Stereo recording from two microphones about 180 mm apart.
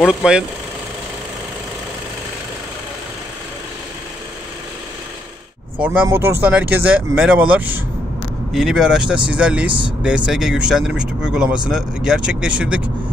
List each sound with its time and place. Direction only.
0.0 s speech: 5° right (ahead or behind)
6.0 s speech: 15° right (ahead or behind)
9.7 s speech: 30° right (ahead or behind)
10.0 s speech: 5° right (ahead or behind)